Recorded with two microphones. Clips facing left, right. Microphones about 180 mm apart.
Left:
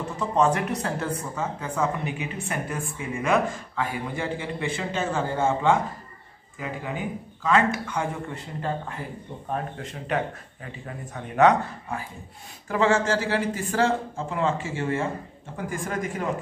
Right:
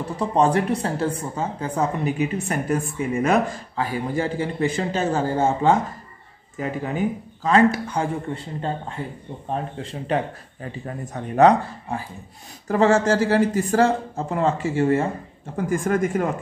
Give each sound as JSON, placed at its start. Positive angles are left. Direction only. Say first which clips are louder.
{"t": 0.2, "sound": "speech", "louder": "right 3 dB", "side_deg": -35}
{"t": 7.4, "sound": "speech", "louder": "right 5 dB", "side_deg": -35}